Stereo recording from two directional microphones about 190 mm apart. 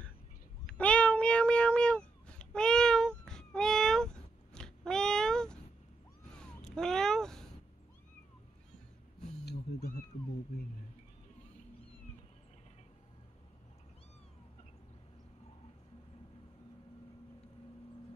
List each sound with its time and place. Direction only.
0.7 s cat: 5° left (ahead or behind)